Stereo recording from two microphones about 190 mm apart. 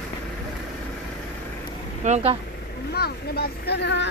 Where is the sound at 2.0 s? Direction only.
35° right (ahead or behind).